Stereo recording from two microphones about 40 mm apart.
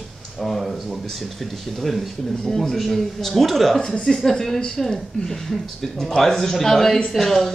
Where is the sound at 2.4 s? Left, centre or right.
Centre.